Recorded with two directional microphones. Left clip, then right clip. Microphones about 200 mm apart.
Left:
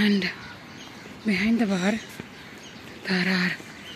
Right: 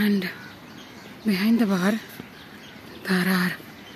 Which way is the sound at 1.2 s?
25° right (ahead or behind).